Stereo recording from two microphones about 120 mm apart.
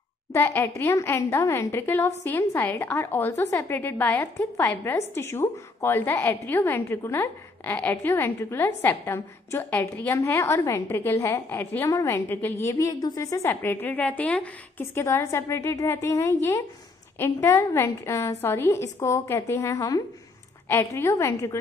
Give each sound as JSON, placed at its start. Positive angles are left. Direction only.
{"t": 0.3, "sound": "a woman's voice", "side_deg": 20}